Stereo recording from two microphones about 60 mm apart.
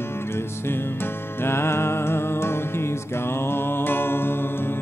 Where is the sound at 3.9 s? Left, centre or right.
Left.